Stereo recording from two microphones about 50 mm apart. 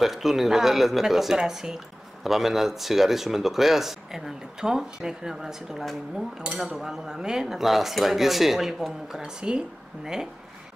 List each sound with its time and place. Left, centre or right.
0.0 s speech: centre
9.2 s speech: centre